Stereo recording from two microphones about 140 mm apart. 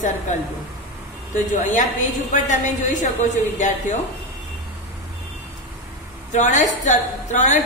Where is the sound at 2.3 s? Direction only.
60° left (ahead or behind).